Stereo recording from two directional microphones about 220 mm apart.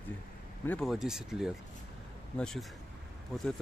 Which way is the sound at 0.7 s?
Centre (ahead or behind).